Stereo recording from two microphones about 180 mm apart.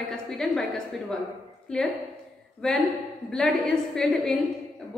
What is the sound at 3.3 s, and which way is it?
A woman's voice, 5° left (ahead or behind).